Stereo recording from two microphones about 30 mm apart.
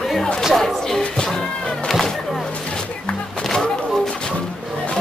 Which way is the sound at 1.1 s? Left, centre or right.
Left.